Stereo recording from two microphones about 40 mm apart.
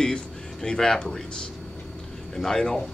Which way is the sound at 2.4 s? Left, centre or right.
Centre.